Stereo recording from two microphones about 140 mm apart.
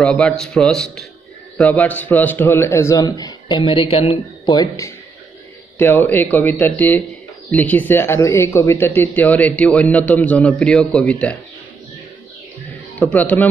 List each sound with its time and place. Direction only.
0.0 s a man's voice: 5° left (ahead or behind); by 4.2 s 40° left (ahead or behind)
4.5 s a man's voice: 25° left (ahead or behind); by 11.3 s 10° left (ahead or behind)
13.1 s speech: 10° left (ahead or behind)